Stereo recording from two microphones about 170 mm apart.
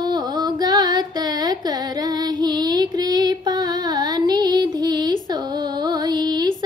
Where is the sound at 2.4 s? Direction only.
25° right (ahead or behind).